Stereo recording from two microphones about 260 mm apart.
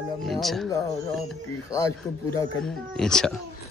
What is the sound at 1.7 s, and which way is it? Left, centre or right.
A man's voice, centre.